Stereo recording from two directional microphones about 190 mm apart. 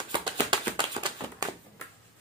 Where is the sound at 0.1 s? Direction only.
25° right (ahead or behind).